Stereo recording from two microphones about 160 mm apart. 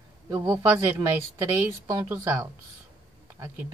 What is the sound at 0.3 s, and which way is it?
Speech, 20° right (ahead or behind).